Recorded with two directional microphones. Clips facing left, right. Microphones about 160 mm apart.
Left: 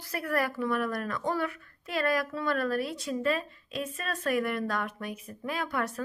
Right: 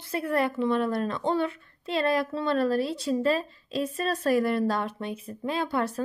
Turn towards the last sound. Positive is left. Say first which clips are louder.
# right 4 dB
turn(degrees=-30)  # may be behind; listen again after turning